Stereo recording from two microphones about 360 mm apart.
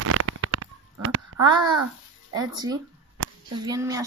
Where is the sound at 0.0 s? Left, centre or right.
Right.